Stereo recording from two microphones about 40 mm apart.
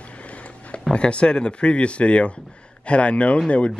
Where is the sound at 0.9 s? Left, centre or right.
Left.